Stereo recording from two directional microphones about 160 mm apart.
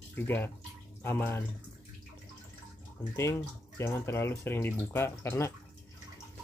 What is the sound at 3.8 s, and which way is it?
Speech, 15° left (ahead or behind).